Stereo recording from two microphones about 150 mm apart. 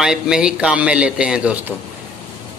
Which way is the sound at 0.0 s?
5° right (ahead or behind).